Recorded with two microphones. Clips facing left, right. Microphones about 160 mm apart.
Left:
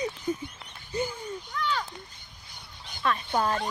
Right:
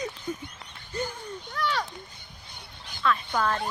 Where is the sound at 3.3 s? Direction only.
30° left (ahead or behind).